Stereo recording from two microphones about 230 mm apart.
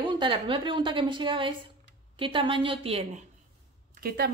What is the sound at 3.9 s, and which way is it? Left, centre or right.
Speech, right.